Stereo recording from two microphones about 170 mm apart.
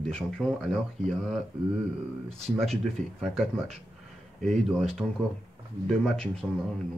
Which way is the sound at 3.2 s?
Centre (ahead or behind).